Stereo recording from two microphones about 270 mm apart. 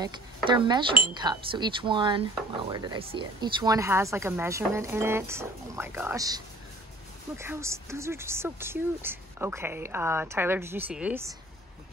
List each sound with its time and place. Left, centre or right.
0.0 s speech: centre